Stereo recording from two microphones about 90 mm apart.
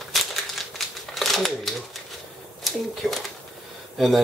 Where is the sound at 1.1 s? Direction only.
Centre (ahead or behind).